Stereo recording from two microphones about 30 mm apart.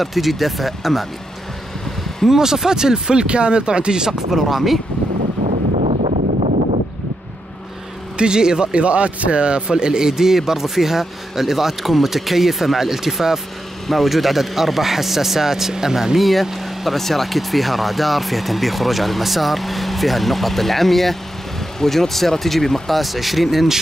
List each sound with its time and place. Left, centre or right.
0.0 s speech: centre
2.2 s speech: centre
4.1 s a man's voice: centre
8.2 s speech: right
8.7 s a man's voice: right; by 13.4 s centre
13.8 s a man's voice: centre
16.2 s speech: centre
22.9 s speech: centre